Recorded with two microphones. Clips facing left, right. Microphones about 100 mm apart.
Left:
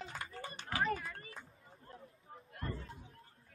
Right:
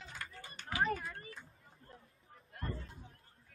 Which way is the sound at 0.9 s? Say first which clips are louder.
Even; 35° right (ahead or behind).